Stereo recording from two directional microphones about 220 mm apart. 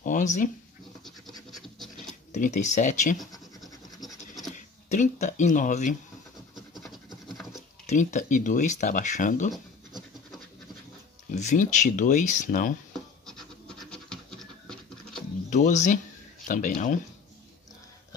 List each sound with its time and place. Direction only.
0.0 s a sound: 35° left (ahead or behind)
2.3 s speech: 35° left (ahead or behind)
3.6 s scratch: centre (ahead or behind)
4.6 s speech: 35° left (ahead or behind)
7.8 s speech: 35° left (ahead or behind)
11.3 s speech: 35° left (ahead or behind)
13.3 s scratch: centre (ahead or behind)
15.5 s speech: 35° left (ahead or behind)